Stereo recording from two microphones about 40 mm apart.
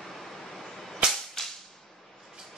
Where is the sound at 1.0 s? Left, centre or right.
Right.